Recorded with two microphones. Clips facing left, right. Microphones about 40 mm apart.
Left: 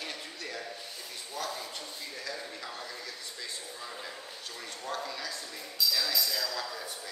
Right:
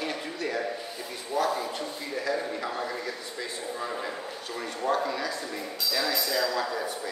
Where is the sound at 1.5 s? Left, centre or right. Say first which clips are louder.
Right 8 dB; right.